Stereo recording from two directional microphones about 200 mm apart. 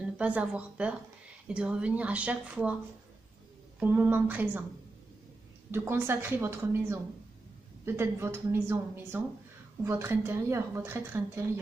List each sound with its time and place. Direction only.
0.2 s a woman's voice: 5° right (ahead or behind)
3.8 s a woman's voice: 10° right (ahead or behind)
5.7 s a woman's voice: 10° right (ahead or behind)